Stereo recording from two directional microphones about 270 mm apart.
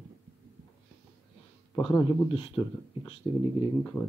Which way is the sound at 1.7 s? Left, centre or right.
Centre.